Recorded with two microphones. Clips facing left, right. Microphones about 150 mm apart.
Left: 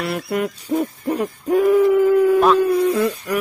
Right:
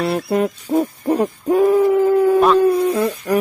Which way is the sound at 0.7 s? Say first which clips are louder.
Right 3 dB; 35° right (ahead or behind).